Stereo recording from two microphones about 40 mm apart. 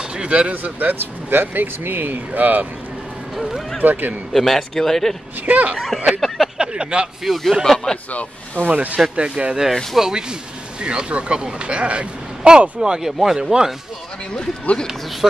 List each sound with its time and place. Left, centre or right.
0.1 s speech: right
3.3 s speech: centre
3.8 s speech: right
4.3 s speech: centre
5.4 s speech: right
6.2 s a sound: centre
6.6 s speech: right
7.2 s speech: centre
7.6 s speech: centre
8.6 s speech: right
9.1 s speech: right
9.9 s speech: centre
10.8 s speech: right